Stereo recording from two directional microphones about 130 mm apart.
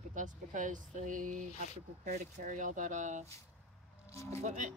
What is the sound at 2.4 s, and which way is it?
Speech, 85° right.